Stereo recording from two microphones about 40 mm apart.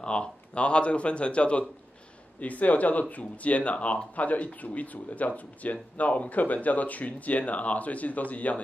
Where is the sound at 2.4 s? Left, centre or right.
Left.